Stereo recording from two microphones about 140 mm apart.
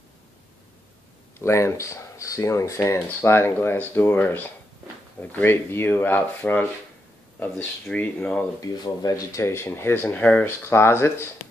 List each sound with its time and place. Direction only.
1.4 s speech: 20° left (ahead or behind)
8.5 s speech: 25° left (ahead or behind)